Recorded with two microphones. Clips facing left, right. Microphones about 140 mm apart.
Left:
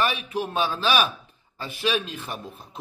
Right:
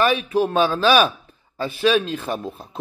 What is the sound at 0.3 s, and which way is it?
A man's voice, 35° right (ahead or behind).